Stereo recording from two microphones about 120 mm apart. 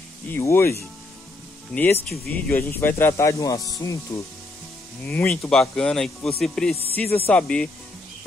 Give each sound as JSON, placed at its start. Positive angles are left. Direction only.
{"t": 0.3, "sound": "speech", "side_deg": 20}
{"t": 5.0, "sound": "speech", "side_deg": 15}